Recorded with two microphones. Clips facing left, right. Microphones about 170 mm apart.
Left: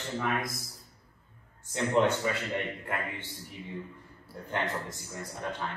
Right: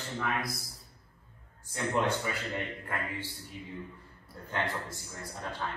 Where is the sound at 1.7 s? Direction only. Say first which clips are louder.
Left 4 dB; 25° left (ahead or behind).